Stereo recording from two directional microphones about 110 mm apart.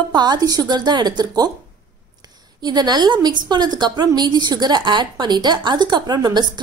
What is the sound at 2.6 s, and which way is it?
A woman's voice, 40° right (ahead or behind).